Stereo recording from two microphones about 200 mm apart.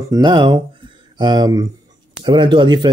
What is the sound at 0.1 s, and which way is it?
Speech, 20° right (ahead or behind).